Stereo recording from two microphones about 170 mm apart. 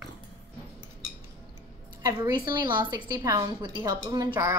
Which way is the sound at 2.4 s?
25° right (ahead or behind).